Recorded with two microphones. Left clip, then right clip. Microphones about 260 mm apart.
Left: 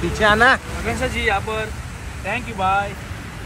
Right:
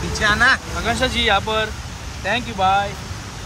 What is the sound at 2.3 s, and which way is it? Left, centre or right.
Speech, right.